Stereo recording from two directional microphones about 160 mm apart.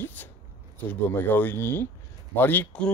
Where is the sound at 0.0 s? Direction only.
10° left (ahead or behind).